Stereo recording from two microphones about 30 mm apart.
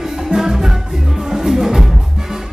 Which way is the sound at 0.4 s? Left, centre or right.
Centre.